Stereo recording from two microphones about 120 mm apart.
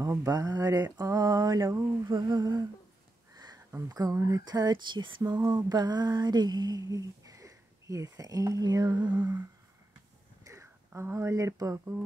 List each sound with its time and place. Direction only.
0.0 s speech: 30° right (ahead or behind)
10.4 s speech: 25° right (ahead or behind)